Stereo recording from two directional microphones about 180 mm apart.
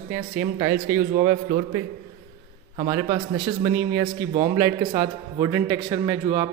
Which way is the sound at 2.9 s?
20° right (ahead or behind).